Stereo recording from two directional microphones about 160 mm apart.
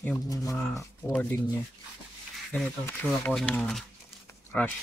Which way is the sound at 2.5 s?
10° left (ahead or behind).